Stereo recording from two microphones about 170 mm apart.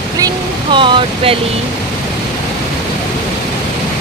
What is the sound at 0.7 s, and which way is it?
Vehicle, 30° right (ahead or behind).